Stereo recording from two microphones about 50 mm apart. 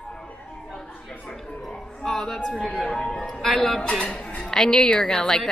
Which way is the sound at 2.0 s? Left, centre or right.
Centre.